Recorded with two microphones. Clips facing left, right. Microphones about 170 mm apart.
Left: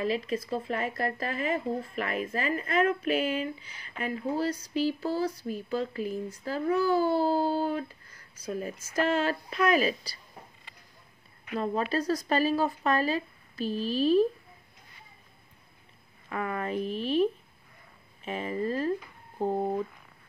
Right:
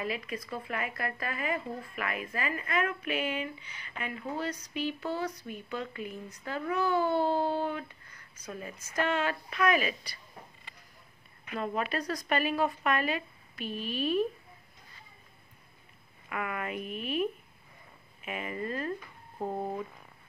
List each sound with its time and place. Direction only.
0.0 s speech: 30° left (ahead or behind)
11.5 s speech: 25° left (ahead or behind)
16.3 s speech: 30° left (ahead or behind)